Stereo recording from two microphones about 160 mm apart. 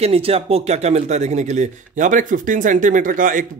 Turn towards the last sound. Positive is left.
turn(degrees=-55)  # may be behind; listen again after turning